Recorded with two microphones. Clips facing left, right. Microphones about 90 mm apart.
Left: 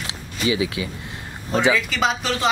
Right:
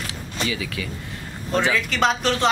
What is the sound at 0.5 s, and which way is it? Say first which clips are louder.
Speech: left 10 dB; 15° left (ahead or behind).